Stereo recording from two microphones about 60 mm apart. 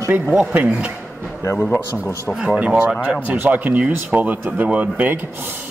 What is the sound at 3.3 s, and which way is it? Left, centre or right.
Speech, right.